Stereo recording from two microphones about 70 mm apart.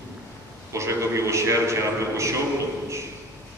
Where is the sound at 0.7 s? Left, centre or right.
Right.